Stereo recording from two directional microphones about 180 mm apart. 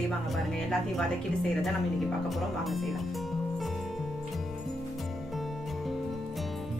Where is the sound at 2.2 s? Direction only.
Centre (ahead or behind).